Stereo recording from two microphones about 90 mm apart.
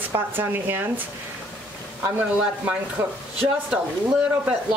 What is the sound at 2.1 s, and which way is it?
Speech, 20° right (ahead or behind).